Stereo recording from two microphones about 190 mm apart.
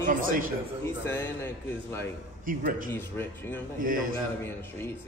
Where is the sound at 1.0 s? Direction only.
15° left (ahead or behind).